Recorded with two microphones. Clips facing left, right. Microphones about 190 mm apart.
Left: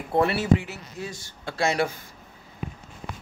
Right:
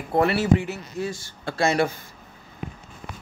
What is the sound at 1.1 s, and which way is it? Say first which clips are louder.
Speech: right 3 dB; 20° left (ahead or behind).